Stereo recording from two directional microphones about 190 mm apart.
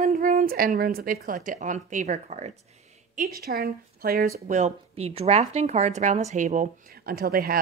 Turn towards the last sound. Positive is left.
turn(degrees=-50)  # may be behind; listen again after turning